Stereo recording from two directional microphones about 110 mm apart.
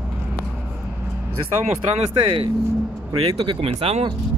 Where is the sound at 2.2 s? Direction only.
55° right (ahead or behind).